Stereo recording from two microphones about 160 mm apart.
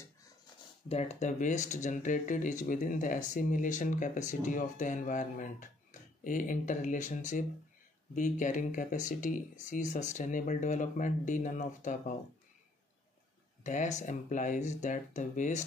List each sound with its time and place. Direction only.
0.8 s speech: 45° left (ahead or behind)
13.7 s speech: 50° left (ahead or behind)